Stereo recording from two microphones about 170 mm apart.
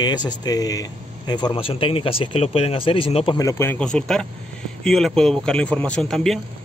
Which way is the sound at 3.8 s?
5° left (ahead or behind).